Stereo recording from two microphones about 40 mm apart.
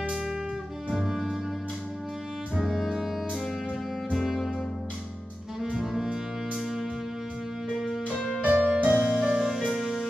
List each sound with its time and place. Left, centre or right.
0.8 s music: centre
2.5 s music: centre
6.5 s music: centre
8.5 s music: centre
9.8 s music: centre